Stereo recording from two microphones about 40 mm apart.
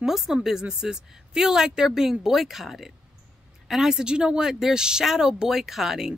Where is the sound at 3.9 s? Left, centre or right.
Right.